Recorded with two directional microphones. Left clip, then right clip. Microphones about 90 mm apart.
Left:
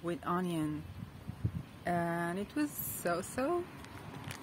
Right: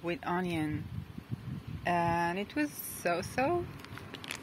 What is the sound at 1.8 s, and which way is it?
Speech, 20° left (ahead or behind).